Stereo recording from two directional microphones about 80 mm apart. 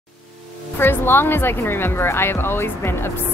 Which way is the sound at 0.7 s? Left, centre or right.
Left.